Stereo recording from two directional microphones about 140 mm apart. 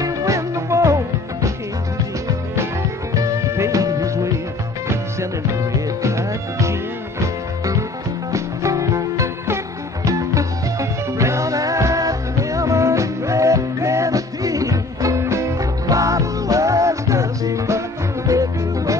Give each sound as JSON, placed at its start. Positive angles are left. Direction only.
{"t": 0.0, "sound": "music", "side_deg": -20}
{"t": 3.2, "sound": "music", "side_deg": -20}
{"t": 5.5, "sound": "music", "side_deg": -20}